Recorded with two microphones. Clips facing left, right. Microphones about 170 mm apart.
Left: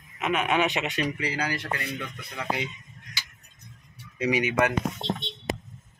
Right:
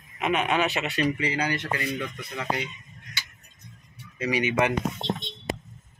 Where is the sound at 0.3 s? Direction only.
10° left (ahead or behind).